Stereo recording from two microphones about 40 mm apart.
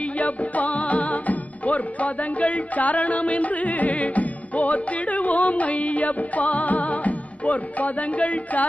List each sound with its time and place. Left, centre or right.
0.2 s music: left